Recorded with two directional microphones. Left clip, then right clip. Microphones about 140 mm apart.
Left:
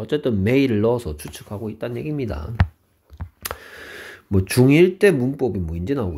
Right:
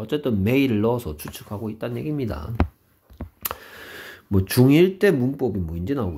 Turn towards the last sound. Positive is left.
turn(degrees=35)  # may be behind; listen again after turning